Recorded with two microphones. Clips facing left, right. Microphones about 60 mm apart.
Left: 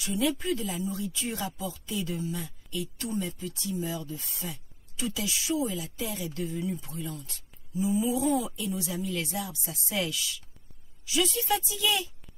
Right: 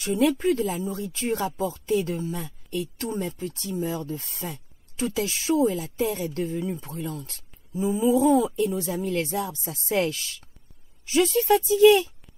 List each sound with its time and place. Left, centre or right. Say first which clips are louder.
0.0 s speech: right 7 dB; right
7.7 s mantra: right 2 dB; right
8.0 s speech: right 11 dB; right